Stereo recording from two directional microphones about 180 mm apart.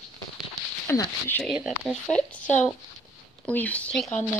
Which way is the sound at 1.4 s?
Centre (ahead or behind).